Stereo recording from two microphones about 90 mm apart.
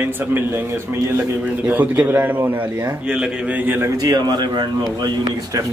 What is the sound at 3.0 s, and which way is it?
Speech, 10° right (ahead or behind).